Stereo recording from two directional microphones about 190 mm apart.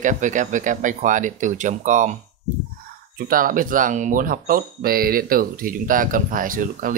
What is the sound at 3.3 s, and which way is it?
Speech, 45° right (ahead or behind).